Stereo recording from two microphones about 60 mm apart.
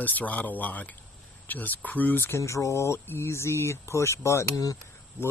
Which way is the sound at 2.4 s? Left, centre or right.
Left.